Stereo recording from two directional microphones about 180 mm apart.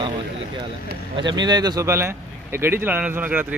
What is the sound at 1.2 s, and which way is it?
Speech, 25° right (ahead or behind).